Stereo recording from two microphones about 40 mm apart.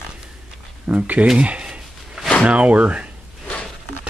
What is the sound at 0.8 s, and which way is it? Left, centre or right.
Speech, right.